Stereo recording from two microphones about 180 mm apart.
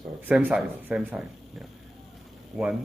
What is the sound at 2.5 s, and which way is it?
Speech, 5° right (ahead or behind).